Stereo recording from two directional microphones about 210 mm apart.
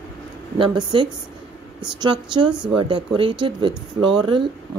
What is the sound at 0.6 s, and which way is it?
Speech, 25° right (ahead or behind).